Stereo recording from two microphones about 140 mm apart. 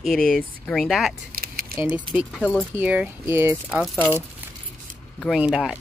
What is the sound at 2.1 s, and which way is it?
Speech, 40° right (ahead or behind).